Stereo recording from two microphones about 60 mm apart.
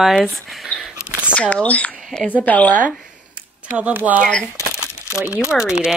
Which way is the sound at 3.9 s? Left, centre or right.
Right.